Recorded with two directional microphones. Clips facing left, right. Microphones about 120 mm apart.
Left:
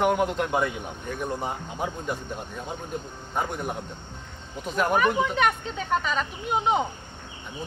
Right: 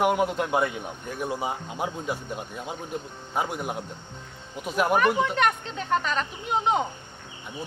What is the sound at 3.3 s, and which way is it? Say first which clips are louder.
Speech: even; 5° right (ahead or behind).